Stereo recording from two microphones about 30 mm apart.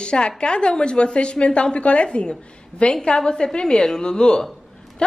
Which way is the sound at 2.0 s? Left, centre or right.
Left.